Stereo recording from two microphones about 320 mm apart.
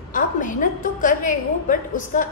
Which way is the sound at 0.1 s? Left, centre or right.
Left.